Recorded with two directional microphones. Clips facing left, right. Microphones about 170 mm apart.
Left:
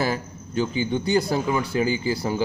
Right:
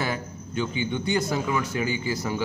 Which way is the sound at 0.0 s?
35° left (ahead or behind).